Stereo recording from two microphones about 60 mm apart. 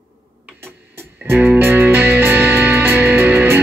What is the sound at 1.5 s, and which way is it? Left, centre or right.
Music, right.